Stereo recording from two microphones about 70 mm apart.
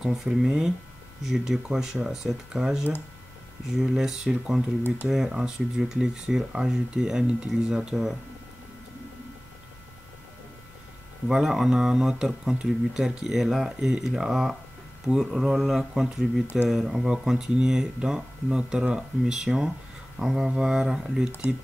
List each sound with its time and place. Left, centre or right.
0.0 s speech: centre
11.2 s speech: centre